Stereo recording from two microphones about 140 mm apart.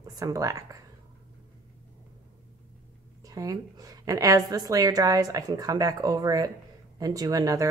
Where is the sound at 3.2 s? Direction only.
25° right (ahead or behind).